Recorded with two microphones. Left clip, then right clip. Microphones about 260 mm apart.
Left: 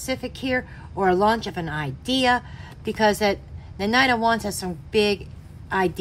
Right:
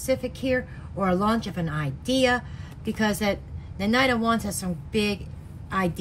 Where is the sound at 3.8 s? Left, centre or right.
Left.